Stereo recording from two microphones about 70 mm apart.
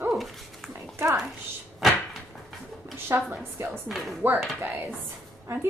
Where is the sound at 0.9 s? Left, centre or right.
Right.